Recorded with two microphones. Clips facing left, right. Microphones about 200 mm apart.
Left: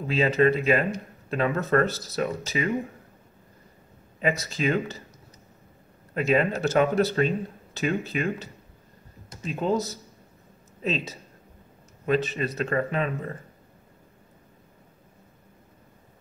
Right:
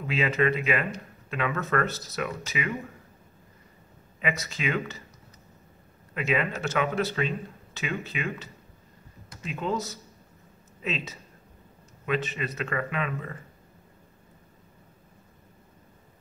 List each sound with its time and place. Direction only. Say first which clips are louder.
0.0 s speech: left 4 dB; 35° left (ahead or behind)
4.2 s speech: left 5 dB; 35° left (ahead or behind)
6.1 s speech: left 5 dB; 40° left (ahead or behind)